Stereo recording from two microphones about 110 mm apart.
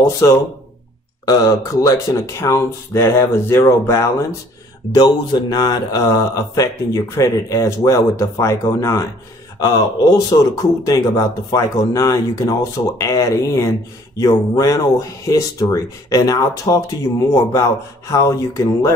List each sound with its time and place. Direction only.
0.2 s speech: 30° left (ahead or behind)
4.9 s speech: 35° left (ahead or behind)